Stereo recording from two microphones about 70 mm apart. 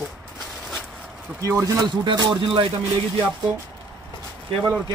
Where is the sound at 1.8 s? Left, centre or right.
Right.